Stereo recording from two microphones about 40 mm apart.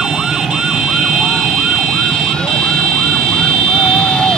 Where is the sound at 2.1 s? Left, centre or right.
Centre.